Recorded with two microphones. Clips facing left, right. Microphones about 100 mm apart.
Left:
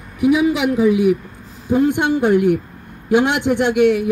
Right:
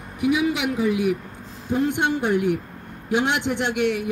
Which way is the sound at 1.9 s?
55° left (ahead or behind).